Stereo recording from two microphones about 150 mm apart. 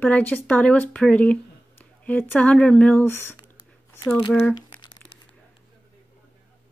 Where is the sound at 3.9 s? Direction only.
25° left (ahead or behind).